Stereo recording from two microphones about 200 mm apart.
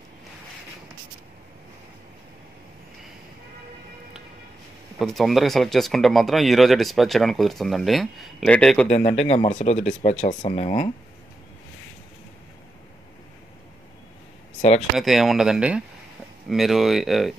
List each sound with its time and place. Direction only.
4.9 s speech: centre (ahead or behind)
9.3 s speech: 35° left (ahead or behind)
15.0 s speech: centre (ahead or behind)